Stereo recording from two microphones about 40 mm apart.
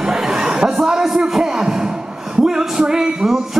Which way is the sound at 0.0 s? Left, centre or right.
Centre.